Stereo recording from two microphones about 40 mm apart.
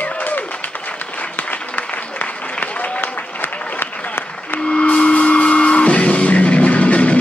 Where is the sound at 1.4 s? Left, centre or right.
Left.